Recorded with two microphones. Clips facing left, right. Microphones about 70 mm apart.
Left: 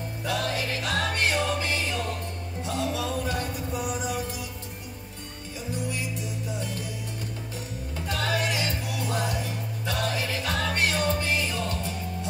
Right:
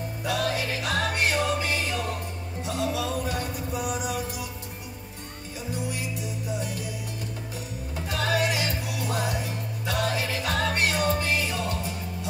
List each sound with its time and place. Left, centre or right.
0.2 s music: centre
8.1 s music: centre